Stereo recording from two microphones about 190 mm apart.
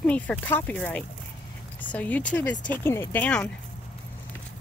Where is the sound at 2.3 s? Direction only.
15° left (ahead or behind).